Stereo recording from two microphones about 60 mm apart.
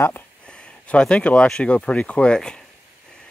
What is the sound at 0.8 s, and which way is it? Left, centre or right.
Speech, centre.